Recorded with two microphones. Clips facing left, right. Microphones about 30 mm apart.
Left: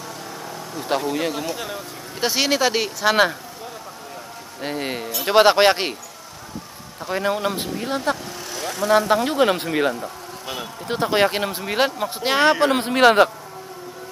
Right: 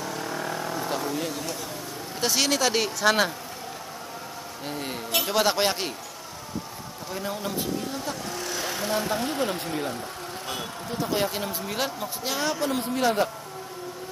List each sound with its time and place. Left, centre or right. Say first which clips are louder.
0.1 s vehicle: right 3 dB; centre
0.4 s vehicle: right 3 dB; centre
1.1 s speech: left 6 dB; left
2.1 s speech: left 4 dB; left
4.6 s speech: left 6 dB; left
7.1 s speech: left 9 dB; left
8.3 s vehicle: left 1 dB; centre
8.8 s speech: left 11 dB; left
10.4 s speech: left 4 dB; centre
10.9 s speech: left 8 dB; left